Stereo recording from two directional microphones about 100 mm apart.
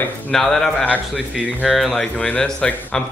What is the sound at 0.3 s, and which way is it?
Speech, 5° left (ahead or behind).